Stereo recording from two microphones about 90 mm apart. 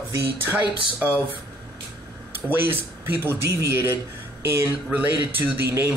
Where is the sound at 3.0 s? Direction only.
25° right (ahead or behind).